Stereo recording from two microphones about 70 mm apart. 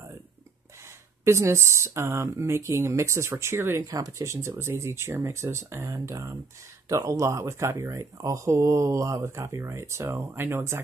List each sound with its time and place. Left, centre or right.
1.2 s speech: right
3.8 s speech: right
8.2 s speech: right